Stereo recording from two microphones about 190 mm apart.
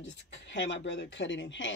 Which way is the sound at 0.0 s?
75° left (ahead or behind).